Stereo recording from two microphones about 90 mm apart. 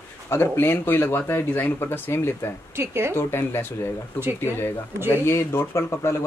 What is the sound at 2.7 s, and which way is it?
Speech, 30° right (ahead or behind).